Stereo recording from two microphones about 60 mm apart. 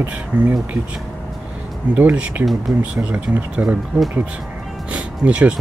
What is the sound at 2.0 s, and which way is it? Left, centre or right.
Speech, right.